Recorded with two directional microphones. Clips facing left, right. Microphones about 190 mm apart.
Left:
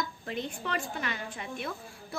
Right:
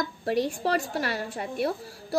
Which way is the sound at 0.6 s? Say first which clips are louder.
Right 8 dB; 40° right (ahead or behind).